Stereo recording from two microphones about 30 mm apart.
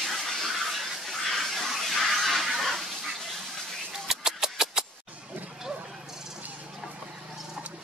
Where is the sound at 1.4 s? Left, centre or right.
Centre.